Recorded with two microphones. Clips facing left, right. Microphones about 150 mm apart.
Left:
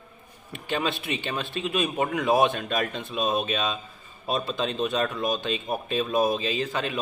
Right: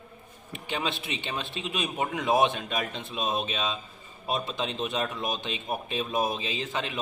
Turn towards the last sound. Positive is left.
turn(degrees=-20)  # may be behind; listen again after turning